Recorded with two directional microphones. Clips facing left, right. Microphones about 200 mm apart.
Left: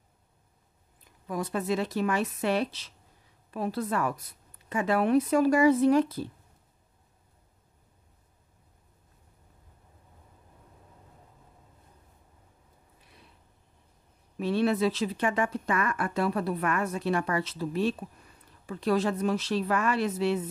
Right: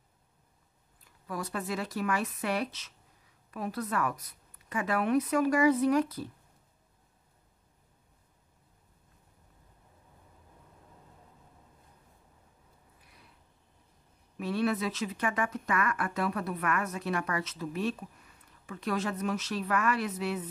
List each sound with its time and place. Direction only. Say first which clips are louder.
1.0 s speech: left 5 dB; 20° left (ahead or behind)
14.4 s speech: left 5 dB; 30° left (ahead or behind)